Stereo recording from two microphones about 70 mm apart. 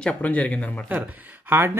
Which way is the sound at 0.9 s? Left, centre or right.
Right.